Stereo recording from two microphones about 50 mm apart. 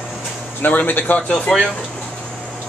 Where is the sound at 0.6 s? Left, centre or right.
Left.